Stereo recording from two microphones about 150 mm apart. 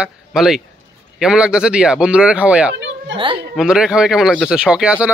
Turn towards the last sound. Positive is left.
turn(degrees=-5)  # may be behind; listen again after turning